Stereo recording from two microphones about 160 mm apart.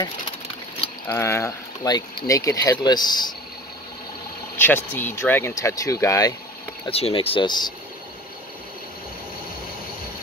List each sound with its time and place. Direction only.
1.0 s speech: 15° left (ahead or behind)
4.6 s speech: 15° left (ahead or behind)
6.9 s speech: 35° left (ahead or behind)